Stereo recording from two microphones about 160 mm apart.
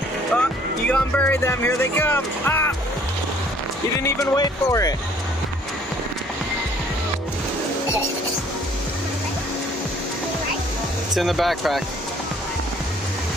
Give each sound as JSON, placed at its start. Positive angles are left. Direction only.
{"t": 0.3, "sound": "speech", "side_deg": 10}
{"t": 4.0, "sound": "speech", "side_deg": 20}
{"t": 11.1, "sound": "speech", "side_deg": 0}